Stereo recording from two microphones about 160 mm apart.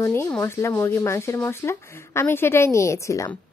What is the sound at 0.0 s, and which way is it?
A woman's voice, 15° left (ahead or behind).